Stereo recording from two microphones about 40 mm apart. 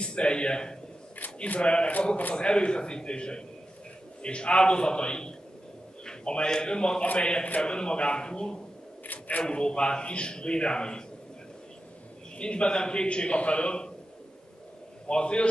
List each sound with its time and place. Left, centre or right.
0.0 s a man's voice: left
9.0 s a sound: left
9.4 s a man's voice: left
12.4 s a man's voice: left
15.0 s a man's voice: left